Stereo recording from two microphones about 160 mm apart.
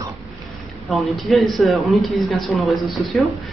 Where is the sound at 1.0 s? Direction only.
Centre (ahead or behind).